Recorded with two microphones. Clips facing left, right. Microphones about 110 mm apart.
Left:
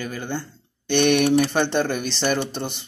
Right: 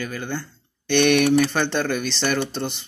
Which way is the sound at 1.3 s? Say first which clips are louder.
Even; 20° left (ahead or behind).